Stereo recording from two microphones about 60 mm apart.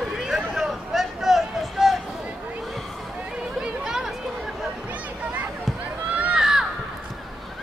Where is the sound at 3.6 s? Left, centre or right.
Centre.